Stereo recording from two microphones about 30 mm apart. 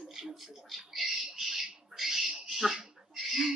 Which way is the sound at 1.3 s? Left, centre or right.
Centre.